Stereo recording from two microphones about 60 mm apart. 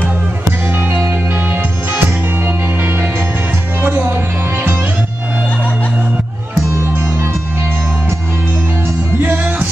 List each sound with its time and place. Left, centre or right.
0.7 s music: right
9.2 s music: right